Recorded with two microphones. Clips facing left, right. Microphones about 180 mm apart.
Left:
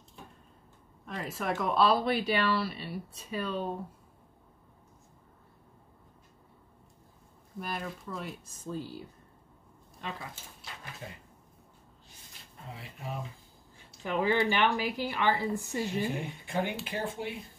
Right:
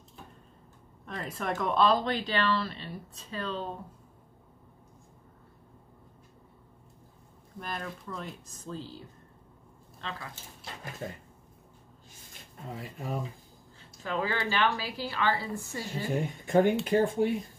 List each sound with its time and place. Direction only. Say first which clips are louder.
1.0 s speech: even; centre (ahead or behind)
7.5 s speech: left 1 dB; 5° left (ahead or behind)
12.7 s speech: right 5 dB; 45° right (ahead or behind)
13.7 s speech: left 1 dB; 15° left (ahead or behind)
16.4 s speech: right 10 dB; 45° right (ahead or behind)